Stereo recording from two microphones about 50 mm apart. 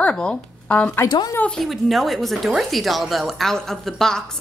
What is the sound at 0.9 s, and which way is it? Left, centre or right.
Speech, left.